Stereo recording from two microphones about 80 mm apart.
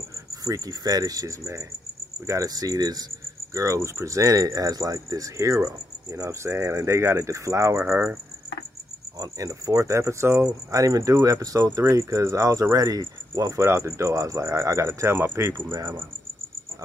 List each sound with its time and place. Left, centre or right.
0.4 s cricket: right
3.5 s cricket: right
9.2 s cricket: right